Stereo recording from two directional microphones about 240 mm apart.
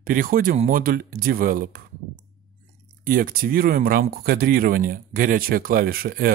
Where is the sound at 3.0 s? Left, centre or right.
Right.